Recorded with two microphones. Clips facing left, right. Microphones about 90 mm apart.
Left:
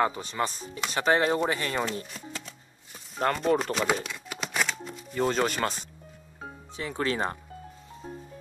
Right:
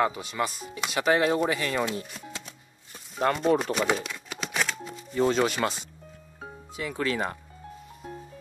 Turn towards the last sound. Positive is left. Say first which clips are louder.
# even
turn(degrees=30)  # may be behind; listen again after turning